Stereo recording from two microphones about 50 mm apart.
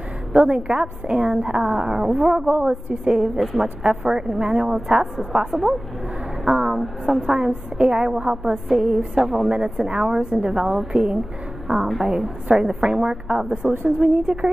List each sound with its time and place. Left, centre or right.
0.5 s a woman's voice: centre
2.4 s a woman's voice: right
2.7 s a woman's voice: centre
3.2 s a woman's voice: centre
9.5 s a woman's voice: centre
10.7 s a woman's voice: centre